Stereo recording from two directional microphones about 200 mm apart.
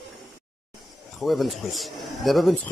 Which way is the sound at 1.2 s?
Centre (ahead or behind).